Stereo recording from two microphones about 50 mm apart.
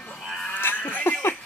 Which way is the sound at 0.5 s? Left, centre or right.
Left.